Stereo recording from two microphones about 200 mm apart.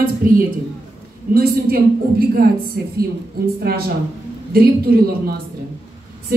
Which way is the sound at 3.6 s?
50° right (ahead or behind).